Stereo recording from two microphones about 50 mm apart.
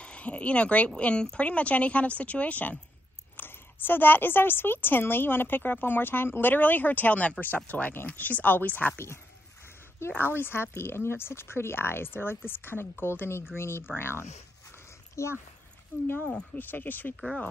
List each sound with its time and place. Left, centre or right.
0.0 s speech: left
3.3 s a woman's voice: left
8.9 s speech: left
10.1 s a woman's voice: left
15.2 s speech: left
16.5 s speech: left